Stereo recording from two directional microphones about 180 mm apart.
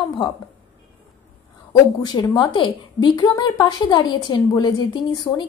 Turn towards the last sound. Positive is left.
turn(degrees=25)  # may be behind; listen again after turning